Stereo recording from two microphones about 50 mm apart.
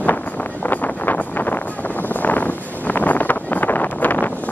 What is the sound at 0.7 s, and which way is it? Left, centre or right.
Vehicle, left.